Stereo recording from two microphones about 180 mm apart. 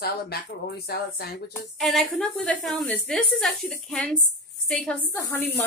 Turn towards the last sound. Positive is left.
turn(degrees=10)  # may be behind; listen again after turning